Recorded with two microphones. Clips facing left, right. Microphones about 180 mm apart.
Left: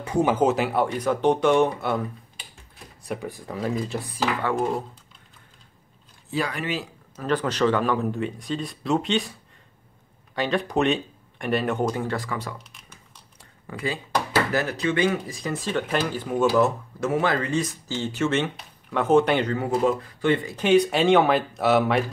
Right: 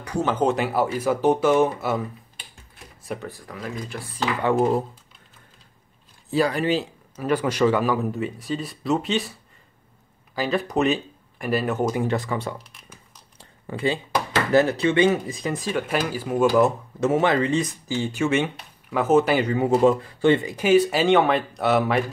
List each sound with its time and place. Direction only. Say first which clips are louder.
0.0 s speech: left 3 dB; 20° left (ahead or behind)
0.3 s speech: right 2 dB; 5° left (ahead or behind)
3.0 s a sound: even; centre (ahead or behind)
3.3 s speech: left 5 dB; 20° left (ahead or behind)
6.3 s speech: right 6 dB; 35° right (ahead or behind)
7.2 s speech: right 2 dB; 10° right (ahead or behind)
10.3 s speech: right 1 dB; centre (ahead or behind)
12.0 s speech: right 4 dB; 20° right (ahead or behind)
13.4 s a sound: right 5 dB; 30° right (ahead or behind)
14.5 s speech: right 6 dB; 25° right (ahead or behind); by 16.4 s 5° right (ahead or behind)
16.5 s speech: right 2 dB; 20° right (ahead or behind)
19.6 s speech: right 5 dB; 25° right (ahead or behind)
20.4 s speech: right 1 dB; 10° right (ahead or behind)